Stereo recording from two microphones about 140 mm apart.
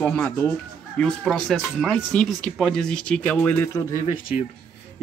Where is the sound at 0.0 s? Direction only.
10° left (ahead or behind).